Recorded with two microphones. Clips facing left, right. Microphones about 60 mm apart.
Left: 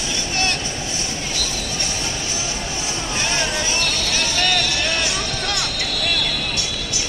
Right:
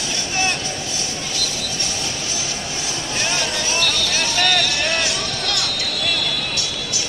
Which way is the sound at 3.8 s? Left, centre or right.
Right.